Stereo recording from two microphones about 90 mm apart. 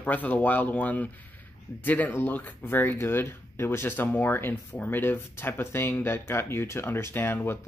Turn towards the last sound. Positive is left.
turn(degrees=25)  # may be behind; listen again after turning